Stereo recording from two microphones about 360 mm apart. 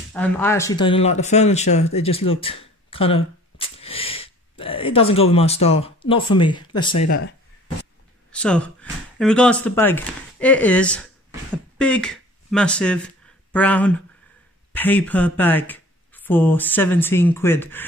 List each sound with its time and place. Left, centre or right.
0.1 s speech: centre
8.3 s speech: centre